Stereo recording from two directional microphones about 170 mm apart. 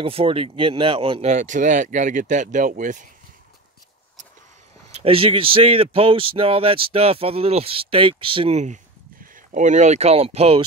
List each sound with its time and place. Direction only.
0.0 s speech: 35° right (ahead or behind)
1.3 s speech: 45° right (ahead or behind)
5.0 s speech: 35° right (ahead or behind)
9.2 s speech: 50° right (ahead or behind); by 10.6 s 35° right (ahead or behind)